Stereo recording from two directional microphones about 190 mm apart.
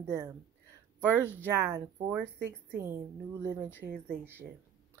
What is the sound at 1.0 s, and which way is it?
Speech, 10° left (ahead or behind).